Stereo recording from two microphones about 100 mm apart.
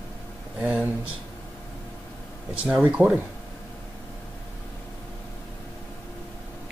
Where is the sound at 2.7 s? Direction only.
10° right (ahead or behind).